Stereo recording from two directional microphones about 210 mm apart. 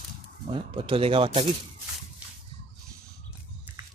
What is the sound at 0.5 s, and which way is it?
Speech, 25° right (ahead or behind).